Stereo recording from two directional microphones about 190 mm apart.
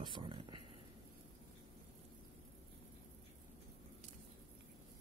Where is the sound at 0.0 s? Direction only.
25° right (ahead or behind).